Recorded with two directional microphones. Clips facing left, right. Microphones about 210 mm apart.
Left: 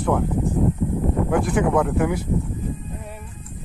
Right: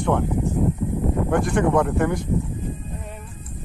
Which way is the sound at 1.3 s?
5° left (ahead or behind).